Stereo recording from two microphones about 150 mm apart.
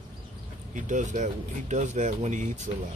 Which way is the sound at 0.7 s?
55° right (ahead or behind).